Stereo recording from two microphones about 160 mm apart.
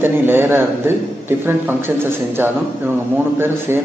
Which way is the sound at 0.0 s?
15° right (ahead or behind).